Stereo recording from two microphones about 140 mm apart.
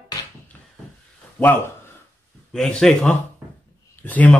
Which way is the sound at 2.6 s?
5° left (ahead or behind).